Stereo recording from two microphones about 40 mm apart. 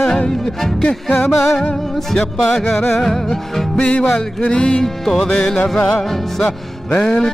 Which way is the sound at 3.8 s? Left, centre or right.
Left.